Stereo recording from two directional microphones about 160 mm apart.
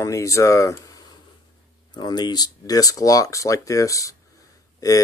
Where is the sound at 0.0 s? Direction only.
20° left (ahead or behind).